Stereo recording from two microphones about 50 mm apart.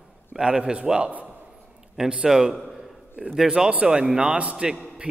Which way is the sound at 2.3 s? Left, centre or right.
Centre.